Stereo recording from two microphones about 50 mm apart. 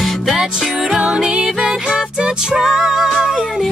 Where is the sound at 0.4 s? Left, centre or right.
Centre.